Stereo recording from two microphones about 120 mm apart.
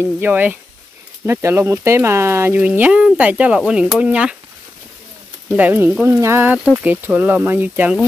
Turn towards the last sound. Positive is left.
turn(degrees=-15)  # may be behind; listen again after turning